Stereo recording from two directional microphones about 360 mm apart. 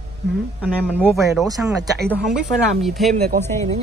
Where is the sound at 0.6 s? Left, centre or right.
Centre.